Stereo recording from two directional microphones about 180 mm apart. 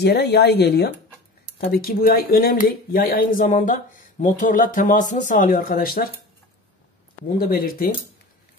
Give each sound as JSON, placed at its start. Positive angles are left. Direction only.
{"t": 0.0, "sound": "speech", "side_deg": 65}
{"t": 7.3, "sound": "speech", "side_deg": 55}